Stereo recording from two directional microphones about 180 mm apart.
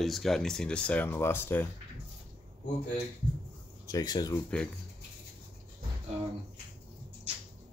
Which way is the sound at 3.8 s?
20° left (ahead or behind).